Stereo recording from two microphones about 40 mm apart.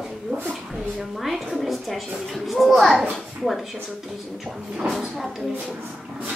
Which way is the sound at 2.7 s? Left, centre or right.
Centre.